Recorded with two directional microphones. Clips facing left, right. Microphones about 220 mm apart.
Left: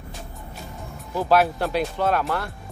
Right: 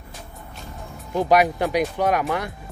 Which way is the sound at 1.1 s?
15° right (ahead or behind).